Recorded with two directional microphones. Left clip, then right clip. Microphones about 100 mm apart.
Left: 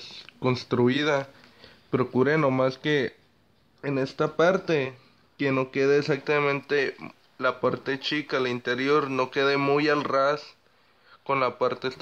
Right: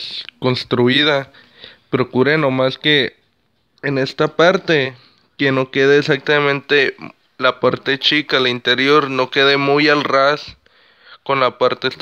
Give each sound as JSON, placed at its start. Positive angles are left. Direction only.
{"t": 0.0, "sound": "speech", "side_deg": -30}
{"t": 3.8, "sound": "speech", "side_deg": -50}